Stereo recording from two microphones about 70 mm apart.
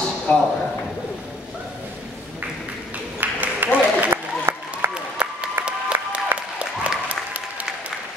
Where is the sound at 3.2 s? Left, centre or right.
Right.